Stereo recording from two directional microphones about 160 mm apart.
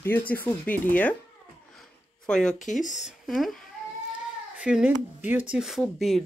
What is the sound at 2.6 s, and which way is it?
Speech, 50° left (ahead or behind).